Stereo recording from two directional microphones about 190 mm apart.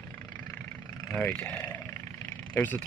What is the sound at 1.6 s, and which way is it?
Wild animals, 15° left (ahead or behind).